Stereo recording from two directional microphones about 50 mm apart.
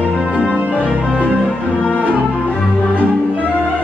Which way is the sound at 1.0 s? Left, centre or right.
Left.